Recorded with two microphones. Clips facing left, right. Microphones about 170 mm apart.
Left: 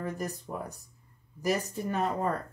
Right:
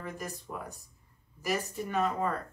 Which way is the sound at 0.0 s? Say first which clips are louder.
Left 5 dB; 40° left (ahead or behind).